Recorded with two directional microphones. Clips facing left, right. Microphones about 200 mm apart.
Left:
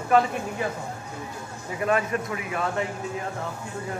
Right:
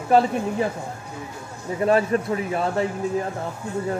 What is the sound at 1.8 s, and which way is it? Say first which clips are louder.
Speech: right 5 dB; 35° right (ahead or behind).